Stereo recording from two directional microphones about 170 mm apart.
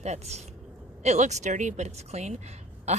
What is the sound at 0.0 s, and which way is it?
A woman's voice, 40° right (ahead or behind).